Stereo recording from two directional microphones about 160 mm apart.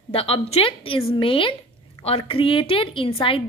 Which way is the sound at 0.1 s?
35° left (ahead or behind).